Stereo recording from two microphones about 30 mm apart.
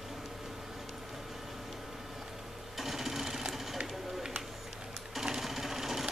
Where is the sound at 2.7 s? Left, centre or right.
Centre.